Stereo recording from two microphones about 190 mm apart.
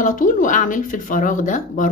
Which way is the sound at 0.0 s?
45° left (ahead or behind).